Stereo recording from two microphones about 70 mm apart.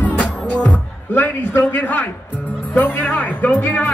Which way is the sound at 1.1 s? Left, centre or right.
Left.